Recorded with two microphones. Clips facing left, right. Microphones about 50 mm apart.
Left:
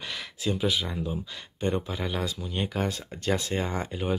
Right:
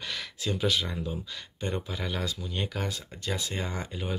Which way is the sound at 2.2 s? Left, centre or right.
Left.